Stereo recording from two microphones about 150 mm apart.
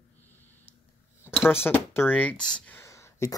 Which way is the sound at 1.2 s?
15° left (ahead or behind).